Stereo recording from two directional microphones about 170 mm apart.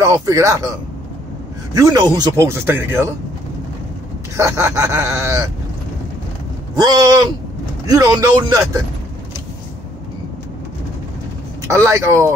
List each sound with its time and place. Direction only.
0.0 s speech: 20° right (ahead or behind)
1.8 s speech: 20° right (ahead or behind)
4.4 s speech: 20° right (ahead or behind)
6.8 s speech: 20° right (ahead or behind)
11.6 s speech: 15° right (ahead or behind)